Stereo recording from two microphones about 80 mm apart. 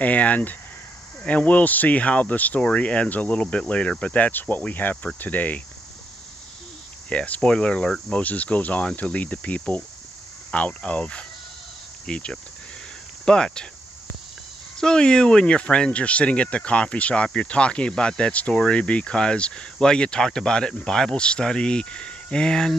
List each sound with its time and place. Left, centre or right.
0.0 s speech: centre
7.1 s speech: centre
13.2 s cricket: centre
14.8 s speech: centre